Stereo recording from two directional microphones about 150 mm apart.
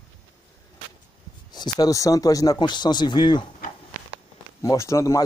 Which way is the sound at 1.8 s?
25° left (ahead or behind).